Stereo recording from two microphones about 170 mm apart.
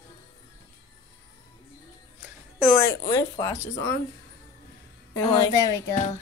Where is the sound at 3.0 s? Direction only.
20° left (ahead or behind).